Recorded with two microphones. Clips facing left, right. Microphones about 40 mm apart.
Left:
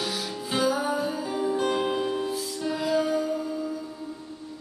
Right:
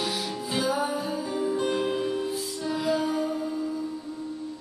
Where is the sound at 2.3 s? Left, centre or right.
Centre.